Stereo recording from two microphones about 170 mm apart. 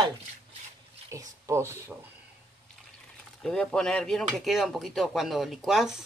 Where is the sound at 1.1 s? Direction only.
15° right (ahead or behind).